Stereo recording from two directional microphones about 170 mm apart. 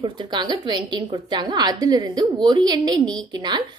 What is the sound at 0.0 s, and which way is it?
A woman's voice, 25° right (ahead or behind).